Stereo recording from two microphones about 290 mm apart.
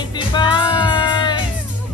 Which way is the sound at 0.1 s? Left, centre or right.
Centre.